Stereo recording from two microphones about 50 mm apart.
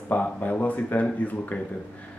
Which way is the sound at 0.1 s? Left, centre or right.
Left.